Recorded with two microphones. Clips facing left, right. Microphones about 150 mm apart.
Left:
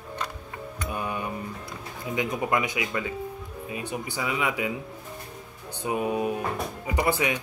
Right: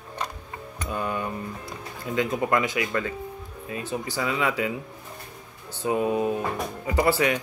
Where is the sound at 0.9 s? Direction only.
15° left (ahead or behind).